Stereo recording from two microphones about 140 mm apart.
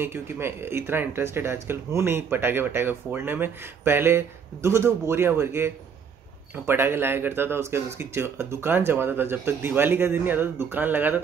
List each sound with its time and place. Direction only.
0.0 s speech: 15° right (ahead or behind)